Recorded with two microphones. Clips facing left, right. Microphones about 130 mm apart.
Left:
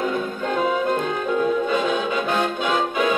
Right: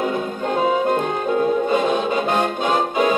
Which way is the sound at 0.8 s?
35° right (ahead or behind).